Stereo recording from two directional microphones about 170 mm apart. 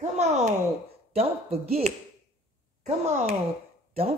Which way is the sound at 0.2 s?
40° right (ahead or behind).